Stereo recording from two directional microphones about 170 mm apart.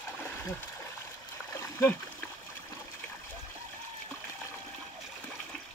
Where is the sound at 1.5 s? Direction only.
15° left (ahead or behind).